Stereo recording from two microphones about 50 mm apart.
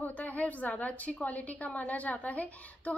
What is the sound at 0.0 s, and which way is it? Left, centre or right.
A woman's voice, left.